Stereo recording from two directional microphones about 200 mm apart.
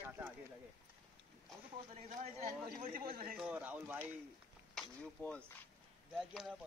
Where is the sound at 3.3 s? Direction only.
5° right (ahead or behind).